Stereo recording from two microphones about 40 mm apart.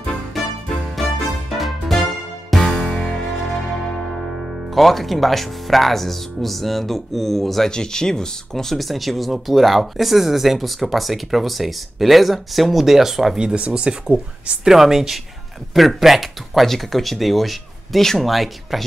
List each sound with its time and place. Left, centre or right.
0.3 s music: centre
2.6 s music: left
4.2 s speech: centre
7.7 s speech: centre
13.6 s speech: right
14.6 s speech: centre